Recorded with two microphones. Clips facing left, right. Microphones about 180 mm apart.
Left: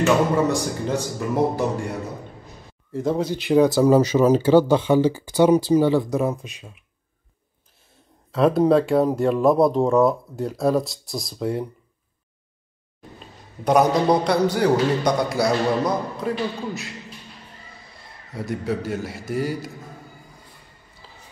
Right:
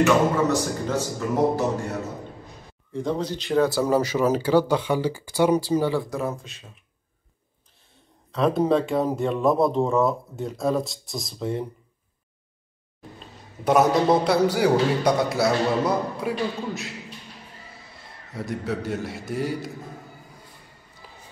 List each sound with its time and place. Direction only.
0.0 s speech: 15° left (ahead or behind)
2.9 s speech: 5° left (ahead or behind)
8.3 s speech: centre (ahead or behind)
13.7 s speech: 5° right (ahead or behind)
18.3 s speech: centre (ahead or behind)
21.0 s music: 15° right (ahead or behind)